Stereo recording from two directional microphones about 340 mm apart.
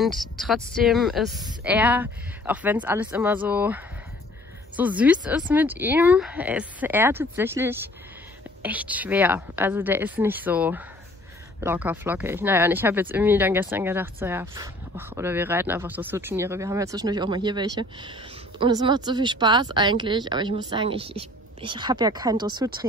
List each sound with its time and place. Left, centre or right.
0.0 s a woman's voice: centre